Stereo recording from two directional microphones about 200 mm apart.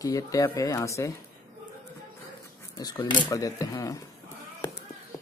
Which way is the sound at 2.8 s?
20° left (ahead or behind).